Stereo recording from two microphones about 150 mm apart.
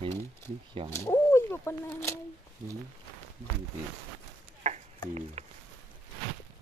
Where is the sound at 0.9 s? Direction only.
20° left (ahead or behind).